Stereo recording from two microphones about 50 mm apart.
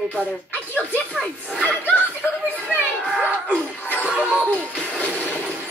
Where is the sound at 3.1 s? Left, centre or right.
Right.